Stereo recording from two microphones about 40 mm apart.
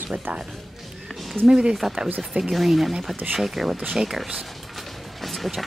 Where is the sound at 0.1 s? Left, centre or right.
Right.